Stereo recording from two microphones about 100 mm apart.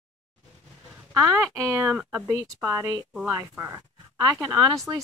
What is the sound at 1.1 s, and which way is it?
Speech, 30° right (ahead or behind).